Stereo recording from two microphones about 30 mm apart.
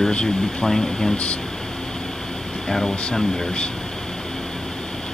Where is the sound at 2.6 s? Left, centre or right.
Centre.